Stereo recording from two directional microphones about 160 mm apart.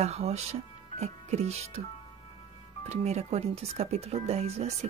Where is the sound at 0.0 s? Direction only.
45° right (ahead or behind).